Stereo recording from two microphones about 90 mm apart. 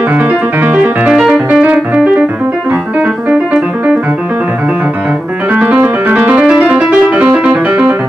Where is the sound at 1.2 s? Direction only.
10° right (ahead or behind).